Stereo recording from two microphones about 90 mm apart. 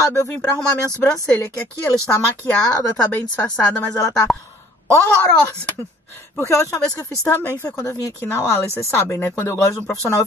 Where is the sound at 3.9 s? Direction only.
40° left (ahead or behind).